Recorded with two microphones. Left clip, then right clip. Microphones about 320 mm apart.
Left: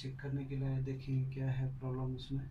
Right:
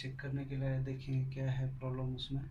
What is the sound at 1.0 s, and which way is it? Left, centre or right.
Speech, centre.